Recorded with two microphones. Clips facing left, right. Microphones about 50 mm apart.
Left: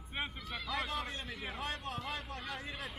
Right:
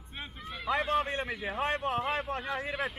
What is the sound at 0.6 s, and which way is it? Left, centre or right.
A man's voice, right.